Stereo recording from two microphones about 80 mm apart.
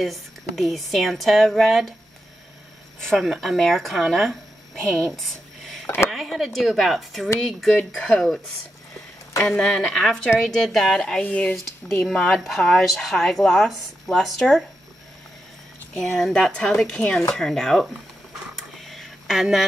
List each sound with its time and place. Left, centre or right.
0.0 s speech: centre
3.0 s speech: centre
4.8 s a sound: centre
6.0 s speech: centre
9.4 s speech: centre
16.2 s speech: centre
18.9 s a sound: centre